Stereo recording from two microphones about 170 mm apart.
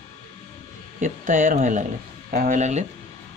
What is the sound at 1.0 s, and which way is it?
Speech, 50° right (ahead or behind).